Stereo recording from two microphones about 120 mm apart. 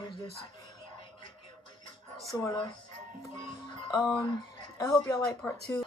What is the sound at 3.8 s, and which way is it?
Speech, 35° left (ahead or behind).